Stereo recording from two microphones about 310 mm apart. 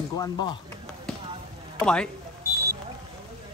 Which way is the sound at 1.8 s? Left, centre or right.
Centre.